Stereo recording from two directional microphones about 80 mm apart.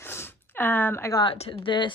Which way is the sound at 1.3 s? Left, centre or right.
Left.